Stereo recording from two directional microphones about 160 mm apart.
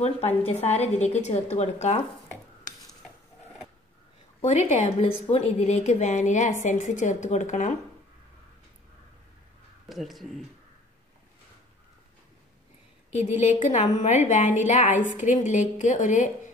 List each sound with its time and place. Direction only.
0.4 s a woman's voice: 40° left (ahead or behind)
4.4 s a woman's voice: 45° left (ahead or behind)
9.8 s speech: centre (ahead or behind)
13.1 s a woman's voice: 45° left (ahead or behind)